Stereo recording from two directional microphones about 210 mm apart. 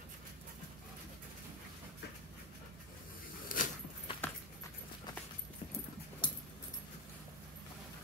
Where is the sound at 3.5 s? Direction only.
40° left (ahead or behind).